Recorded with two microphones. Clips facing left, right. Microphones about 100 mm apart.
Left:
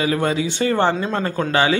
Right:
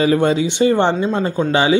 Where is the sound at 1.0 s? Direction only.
10° right (ahead or behind).